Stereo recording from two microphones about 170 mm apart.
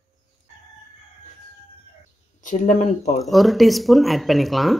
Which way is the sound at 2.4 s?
45° left (ahead or behind).